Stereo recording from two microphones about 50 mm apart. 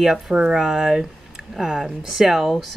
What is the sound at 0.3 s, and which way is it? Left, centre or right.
Speech, right.